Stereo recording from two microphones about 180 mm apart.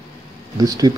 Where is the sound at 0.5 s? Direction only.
20° right (ahead or behind).